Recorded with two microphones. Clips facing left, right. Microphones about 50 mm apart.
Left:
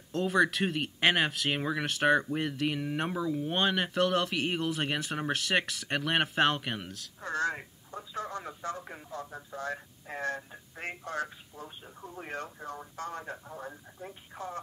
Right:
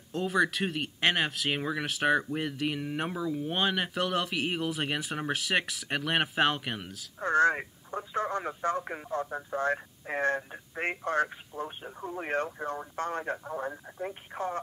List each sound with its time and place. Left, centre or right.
0.1 s speech: centre
7.2 s speech: right